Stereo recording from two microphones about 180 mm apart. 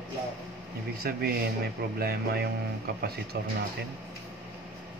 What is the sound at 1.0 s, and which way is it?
A man's voice, 55° right (ahead or behind).